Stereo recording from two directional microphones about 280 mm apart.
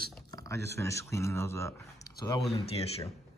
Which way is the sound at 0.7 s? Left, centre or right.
Centre.